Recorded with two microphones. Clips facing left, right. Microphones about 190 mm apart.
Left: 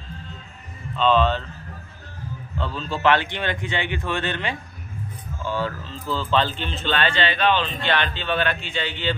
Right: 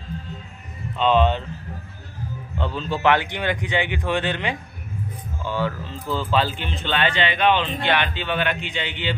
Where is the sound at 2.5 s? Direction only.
15° right (ahead or behind).